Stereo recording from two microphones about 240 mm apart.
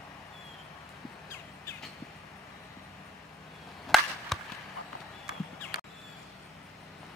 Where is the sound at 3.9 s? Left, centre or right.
Centre.